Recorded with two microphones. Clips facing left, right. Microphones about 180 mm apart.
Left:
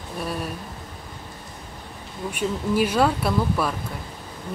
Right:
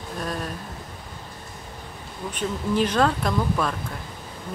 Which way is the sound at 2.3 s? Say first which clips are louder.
Left 1 dB; 10° left (ahead or behind).